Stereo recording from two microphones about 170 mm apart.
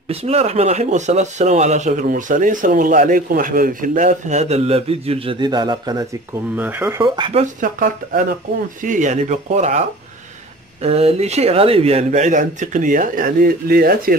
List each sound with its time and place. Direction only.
0.1 s speech: 35° right (ahead or behind); by 7.1 s 15° right (ahead or behind)
7.2 s speech: 30° right (ahead or behind)
7.4 s speech: 55° right (ahead or behind)